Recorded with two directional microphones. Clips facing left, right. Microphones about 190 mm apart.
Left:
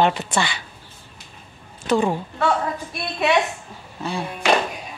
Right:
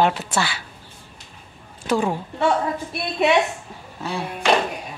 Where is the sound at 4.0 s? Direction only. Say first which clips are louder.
Left 1 dB; 5° right (ahead or behind).